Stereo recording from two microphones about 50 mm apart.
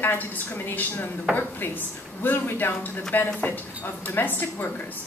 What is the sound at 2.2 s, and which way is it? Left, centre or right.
A woman's voice, left.